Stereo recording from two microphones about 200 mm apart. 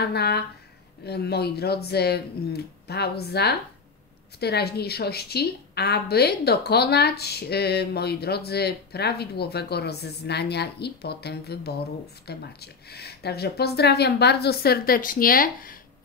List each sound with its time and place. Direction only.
0.0 s a woman's voice: 55° left (ahead or behind)